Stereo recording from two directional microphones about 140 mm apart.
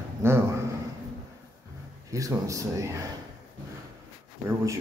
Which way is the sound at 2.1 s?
25° right (ahead or behind).